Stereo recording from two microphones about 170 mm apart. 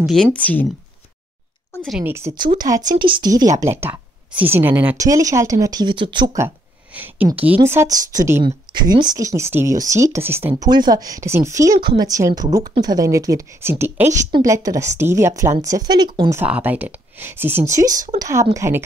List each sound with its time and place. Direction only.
0.0 s speech: 5° left (ahead or behind)
1.9 s a woman's voice: 5° right (ahead or behind)
2.3 s speech: 25° right (ahead or behind)
15.8 s speech: 25° right (ahead or behind)
16.3 s speech: 10° right (ahead or behind)